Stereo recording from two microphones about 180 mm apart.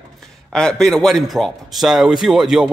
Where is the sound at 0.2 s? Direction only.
5° left (ahead or behind).